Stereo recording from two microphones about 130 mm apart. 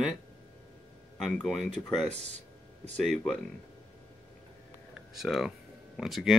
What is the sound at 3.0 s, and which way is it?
Speech, 5° left (ahead or behind).